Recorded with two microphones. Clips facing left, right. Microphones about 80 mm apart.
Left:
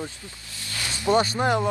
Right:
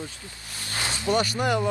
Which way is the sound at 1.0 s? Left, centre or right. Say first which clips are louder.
Left 4 dB; left.